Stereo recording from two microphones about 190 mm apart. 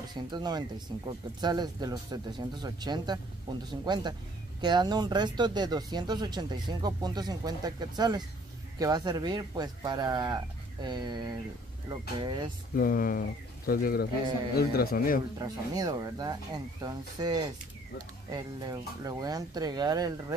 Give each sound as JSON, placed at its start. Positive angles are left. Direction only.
{"t": 0.1, "sound": "speech", "side_deg": -20}
{"t": 12.7, "sound": "a man's voice", "side_deg": 50}
{"t": 15.3, "sound": "speech", "side_deg": -20}